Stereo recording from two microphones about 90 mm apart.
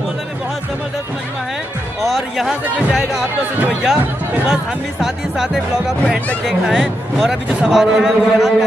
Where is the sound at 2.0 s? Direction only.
Centre (ahead or behind).